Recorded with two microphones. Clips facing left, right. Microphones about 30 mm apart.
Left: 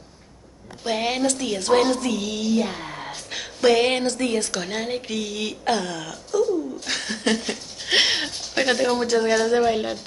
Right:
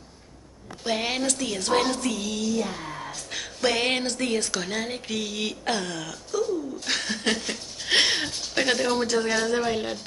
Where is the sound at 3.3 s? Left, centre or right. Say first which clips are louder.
Left 7 dB; centre.